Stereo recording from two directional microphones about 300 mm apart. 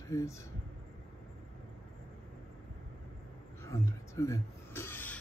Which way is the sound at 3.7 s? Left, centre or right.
Centre.